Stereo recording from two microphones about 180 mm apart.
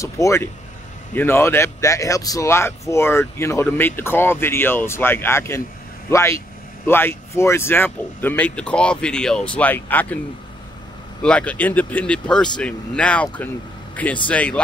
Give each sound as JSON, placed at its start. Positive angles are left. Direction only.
{"t": 0.0, "sound": "speech", "side_deg": 15}
{"t": 11.2, "sound": "speech", "side_deg": 5}